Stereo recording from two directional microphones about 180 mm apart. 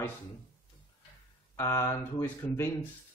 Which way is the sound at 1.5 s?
15° left (ahead or behind).